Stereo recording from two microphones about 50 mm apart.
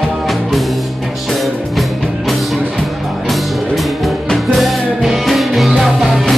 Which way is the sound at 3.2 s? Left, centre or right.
Centre.